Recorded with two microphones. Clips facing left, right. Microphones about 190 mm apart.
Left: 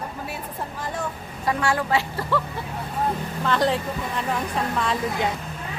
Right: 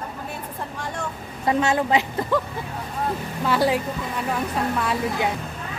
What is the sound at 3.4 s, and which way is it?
Speech, 10° right (ahead or behind).